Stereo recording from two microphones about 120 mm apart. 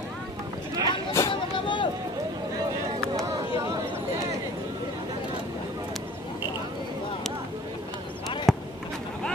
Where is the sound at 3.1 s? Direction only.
35° right (ahead or behind).